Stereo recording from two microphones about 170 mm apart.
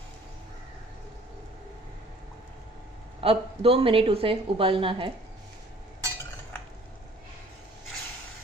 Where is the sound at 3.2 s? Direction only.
35° right (ahead or behind).